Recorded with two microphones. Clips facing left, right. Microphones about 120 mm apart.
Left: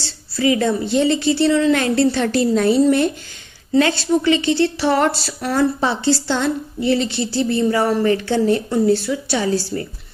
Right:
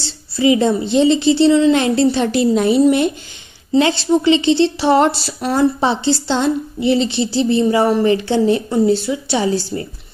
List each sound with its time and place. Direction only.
0.0 s speech: 20° right (ahead or behind)